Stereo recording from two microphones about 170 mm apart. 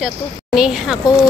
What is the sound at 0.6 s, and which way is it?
Speech, 5° right (ahead or behind).